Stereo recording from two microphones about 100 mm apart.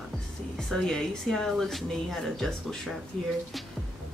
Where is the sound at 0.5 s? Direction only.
5° left (ahead or behind).